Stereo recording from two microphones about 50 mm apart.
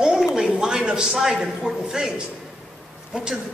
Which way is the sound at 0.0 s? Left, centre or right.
Centre.